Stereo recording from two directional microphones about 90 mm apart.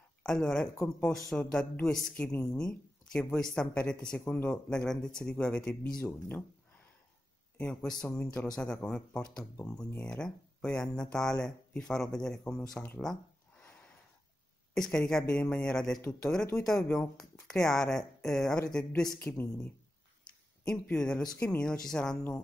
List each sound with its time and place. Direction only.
0.2 s speech: 5° left (ahead or behind)
7.5 s speech: 15° left (ahead or behind)
13.0 s a sound: 10° left (ahead or behind)
14.7 s speech: 10° left (ahead or behind)
19.1 s a woman's voice: 25° left (ahead or behind); by 22.2 s 5° left (ahead or behind)